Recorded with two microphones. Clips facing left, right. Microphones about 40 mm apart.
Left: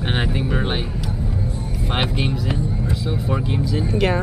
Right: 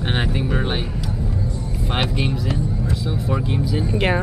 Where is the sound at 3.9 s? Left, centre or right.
Right.